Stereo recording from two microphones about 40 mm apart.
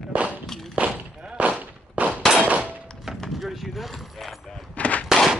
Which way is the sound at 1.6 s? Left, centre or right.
Right.